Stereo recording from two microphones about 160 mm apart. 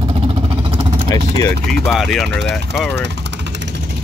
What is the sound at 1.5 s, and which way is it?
Speech, 75° right (ahead or behind).